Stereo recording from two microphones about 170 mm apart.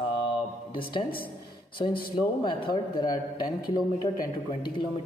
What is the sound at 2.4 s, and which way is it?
A man's voice, 25° left (ahead or behind).